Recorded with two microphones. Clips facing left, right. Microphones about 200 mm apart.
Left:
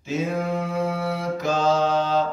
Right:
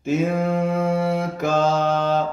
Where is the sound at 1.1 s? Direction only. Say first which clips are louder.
Right 3 dB; 50° right (ahead or behind).